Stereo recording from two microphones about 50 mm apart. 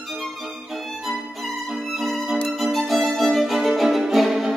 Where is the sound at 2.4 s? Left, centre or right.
Centre.